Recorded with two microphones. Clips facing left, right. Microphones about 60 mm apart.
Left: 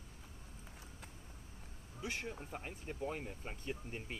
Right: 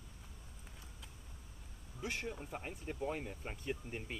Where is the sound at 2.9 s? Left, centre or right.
Centre.